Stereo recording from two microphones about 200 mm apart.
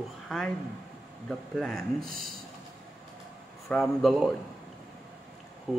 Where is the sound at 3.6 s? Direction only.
Centre (ahead or behind).